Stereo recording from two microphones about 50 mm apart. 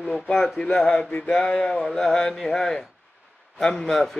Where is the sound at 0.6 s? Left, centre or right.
Left.